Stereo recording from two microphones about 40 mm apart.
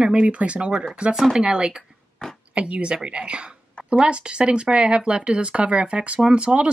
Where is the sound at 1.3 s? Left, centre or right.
Right.